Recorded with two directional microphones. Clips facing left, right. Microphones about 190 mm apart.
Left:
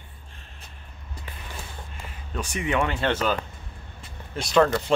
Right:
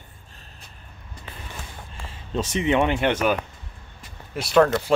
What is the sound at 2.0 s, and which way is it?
Speech, 25° right (ahead or behind).